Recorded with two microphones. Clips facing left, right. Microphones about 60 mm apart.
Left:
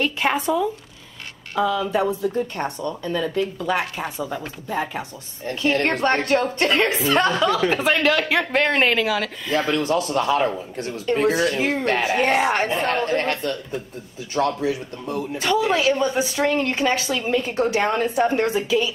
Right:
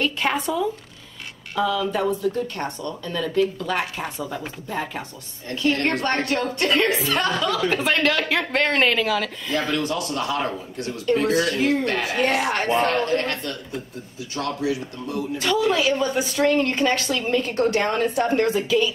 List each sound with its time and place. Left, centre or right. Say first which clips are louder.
0.0 s a woman's voice: left 2 dB; centre
5.5 s a woman's voice: left 1 dB; left
7.8 s a woman's voice: left 2 dB; centre
9.7 s a woman's voice: left 3 dB; left
15.4 s a woman's voice: left 1 dB; centre
15.8 s a woman's voice: left 2 dB; centre